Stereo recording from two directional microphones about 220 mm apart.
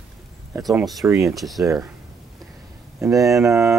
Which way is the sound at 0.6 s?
Centre (ahead or behind).